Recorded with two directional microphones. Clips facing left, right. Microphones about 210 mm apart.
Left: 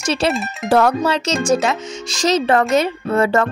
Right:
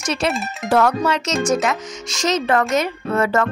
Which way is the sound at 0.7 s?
35° left (ahead or behind).